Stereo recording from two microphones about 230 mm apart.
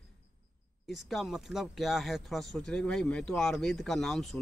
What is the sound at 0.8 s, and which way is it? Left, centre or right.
Speech, centre.